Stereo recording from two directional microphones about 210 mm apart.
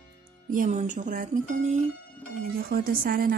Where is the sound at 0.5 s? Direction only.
40° right (ahead or behind).